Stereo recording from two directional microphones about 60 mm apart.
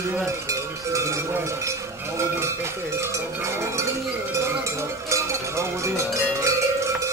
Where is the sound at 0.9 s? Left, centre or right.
Right.